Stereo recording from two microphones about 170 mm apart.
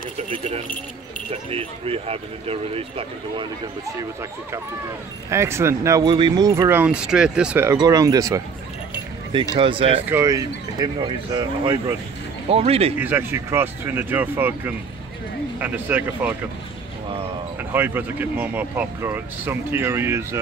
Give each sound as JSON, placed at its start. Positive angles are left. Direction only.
{"t": 0.2, "sound": "speech", "side_deg": -35}
{"t": 5.3, "sound": "speech", "side_deg": -15}
{"t": 10.0, "sound": "speech", "side_deg": -15}
{"t": 13.0, "sound": "speech", "side_deg": -10}
{"t": 17.7, "sound": "speech", "side_deg": -10}